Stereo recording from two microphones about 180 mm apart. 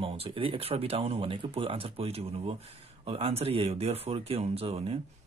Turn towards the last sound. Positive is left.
turn(degrees=-35)  # may be behind; listen again after turning